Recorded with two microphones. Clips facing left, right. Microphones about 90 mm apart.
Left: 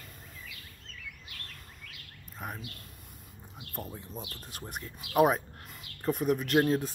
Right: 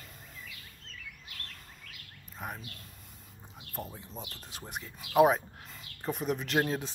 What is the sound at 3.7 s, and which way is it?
Speech, centre (ahead or behind).